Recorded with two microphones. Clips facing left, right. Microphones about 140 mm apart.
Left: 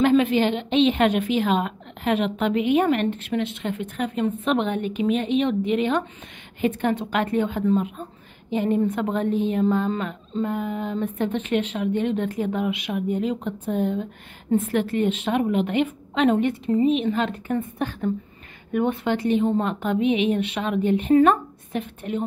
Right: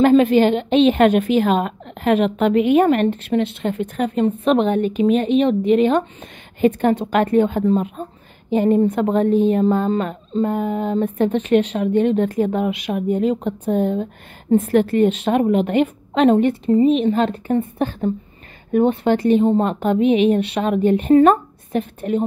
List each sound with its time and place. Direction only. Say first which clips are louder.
0.0 s a woman's voice: right 6 dB; 40° right (ahead or behind)